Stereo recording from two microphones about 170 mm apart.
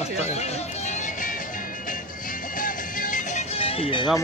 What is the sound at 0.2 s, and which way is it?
Music, 40° left (ahead or behind).